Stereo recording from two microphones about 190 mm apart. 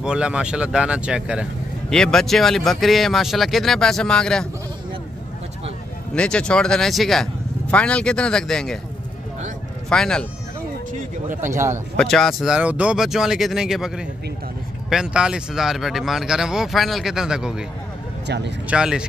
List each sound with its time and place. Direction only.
0.0 s speech: 5° right (ahead or behind)
6.1 s speech: 5° left (ahead or behind)
9.8 s speech: 5° left (ahead or behind)
12.0 s speech: centre (ahead or behind)
18.2 s speech: 65° right (ahead or behind)
18.7 s speech: 5° right (ahead or behind)